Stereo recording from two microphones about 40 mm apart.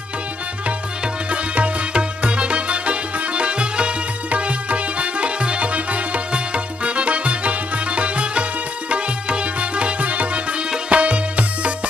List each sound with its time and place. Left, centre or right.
1.3 s music: right